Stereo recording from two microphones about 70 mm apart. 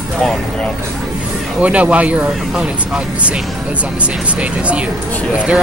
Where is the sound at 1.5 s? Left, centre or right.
Centre.